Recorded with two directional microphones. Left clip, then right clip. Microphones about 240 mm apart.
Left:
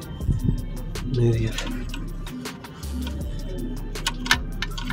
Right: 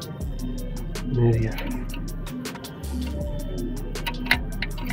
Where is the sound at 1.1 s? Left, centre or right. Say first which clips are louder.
Right 1 dB; centre.